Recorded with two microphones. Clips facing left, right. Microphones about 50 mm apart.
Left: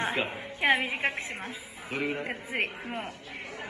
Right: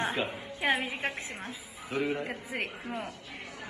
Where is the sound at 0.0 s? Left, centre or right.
Left.